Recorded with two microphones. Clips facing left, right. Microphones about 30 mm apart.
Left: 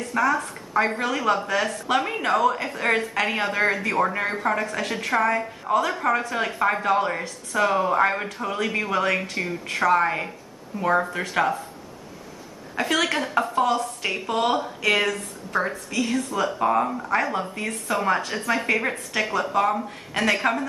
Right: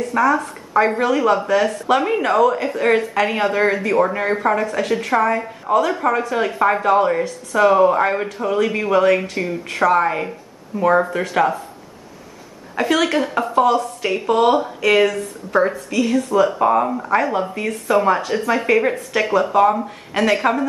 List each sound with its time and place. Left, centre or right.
0.0 s a woman's voice: centre
12.7 s a woman's voice: centre